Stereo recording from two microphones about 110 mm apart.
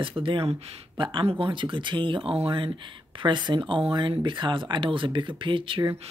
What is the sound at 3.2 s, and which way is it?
Speech, 45° right (ahead or behind).